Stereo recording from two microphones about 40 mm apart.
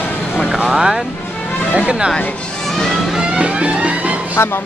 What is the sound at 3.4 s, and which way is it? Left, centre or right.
Music, right.